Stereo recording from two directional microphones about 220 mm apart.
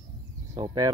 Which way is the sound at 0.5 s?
15° right (ahead or behind).